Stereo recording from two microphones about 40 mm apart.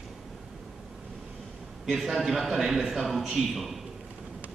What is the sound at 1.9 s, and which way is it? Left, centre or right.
A man's voice, centre.